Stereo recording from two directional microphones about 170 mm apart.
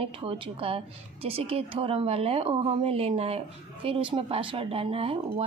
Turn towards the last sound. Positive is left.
turn(degrees=-35)  # may be behind; listen again after turning